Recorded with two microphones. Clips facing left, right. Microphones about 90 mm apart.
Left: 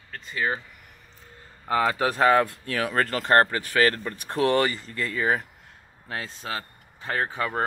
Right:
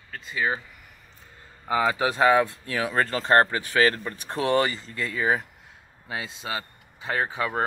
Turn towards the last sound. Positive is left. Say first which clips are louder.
# even
turn(degrees=-5)  # may be behind; listen again after turning